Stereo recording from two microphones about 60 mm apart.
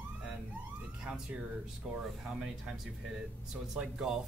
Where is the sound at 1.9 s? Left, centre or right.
Centre.